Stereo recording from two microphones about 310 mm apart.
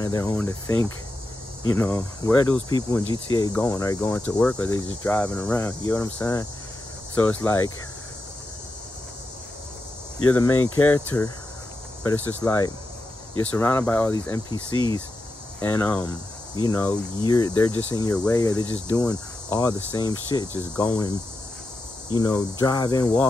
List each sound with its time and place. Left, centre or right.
0.0 s speech: centre
10.5 s speech: left
10.8 s speech: centre
15.6 s speech: centre